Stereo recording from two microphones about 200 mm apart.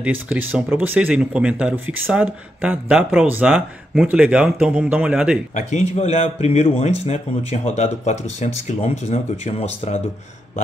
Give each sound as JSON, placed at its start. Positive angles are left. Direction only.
{"t": 0.0, "sound": "speech", "side_deg": -10}
{"t": 5.5, "sound": "speech", "side_deg": 35}